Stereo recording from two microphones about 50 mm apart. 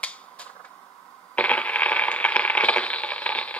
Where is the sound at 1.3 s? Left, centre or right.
Left.